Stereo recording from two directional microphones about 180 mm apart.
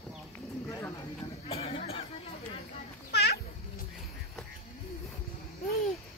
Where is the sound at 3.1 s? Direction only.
65° left (ahead or behind).